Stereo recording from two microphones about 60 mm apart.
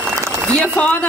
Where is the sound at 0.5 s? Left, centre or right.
Left.